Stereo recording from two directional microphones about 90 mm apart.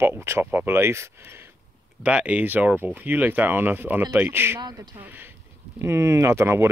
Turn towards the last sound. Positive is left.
turn(degrees=-30)  # may be behind; listen again after turning